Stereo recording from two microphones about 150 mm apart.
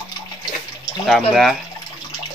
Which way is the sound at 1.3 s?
Centre (ahead or behind).